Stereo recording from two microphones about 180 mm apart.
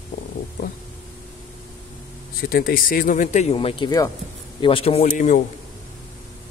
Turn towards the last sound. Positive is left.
turn(degrees=45)  # may be behind; listen again after turning